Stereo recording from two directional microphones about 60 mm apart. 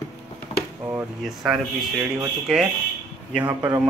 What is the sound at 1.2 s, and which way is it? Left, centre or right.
Speech, centre.